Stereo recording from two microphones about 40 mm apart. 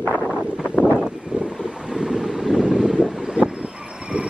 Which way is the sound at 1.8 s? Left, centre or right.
Centre.